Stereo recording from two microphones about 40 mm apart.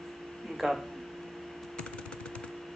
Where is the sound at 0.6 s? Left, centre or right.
Centre.